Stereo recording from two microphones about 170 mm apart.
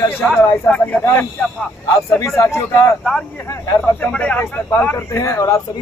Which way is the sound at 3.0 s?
5° left (ahead or behind).